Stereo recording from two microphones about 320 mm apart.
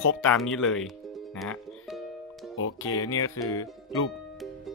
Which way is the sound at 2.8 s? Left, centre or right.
Centre.